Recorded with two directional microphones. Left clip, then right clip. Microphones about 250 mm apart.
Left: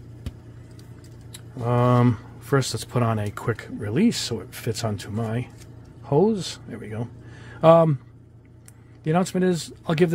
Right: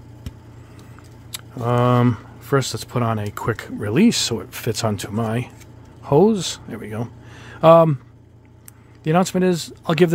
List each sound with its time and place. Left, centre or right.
1.3 s speech: centre
9.0 s speech: centre